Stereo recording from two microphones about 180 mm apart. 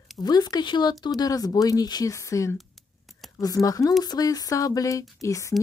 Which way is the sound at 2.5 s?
Centre (ahead or behind).